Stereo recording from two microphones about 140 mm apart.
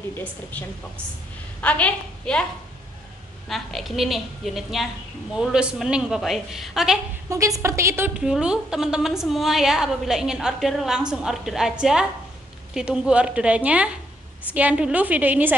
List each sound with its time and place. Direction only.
0.2 s a woman's voice: 10° left (ahead or behind)
3.4 s a woman's voice: centre (ahead or behind)
7.2 s a woman's voice: 25° right (ahead or behind)
8.2 s a woman's voice: 5° right (ahead or behind)